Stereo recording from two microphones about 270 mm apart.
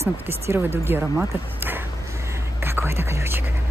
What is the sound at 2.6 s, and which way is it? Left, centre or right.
Whispering, centre.